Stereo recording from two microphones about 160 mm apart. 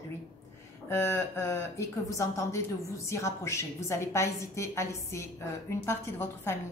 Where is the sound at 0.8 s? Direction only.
15° left (ahead or behind).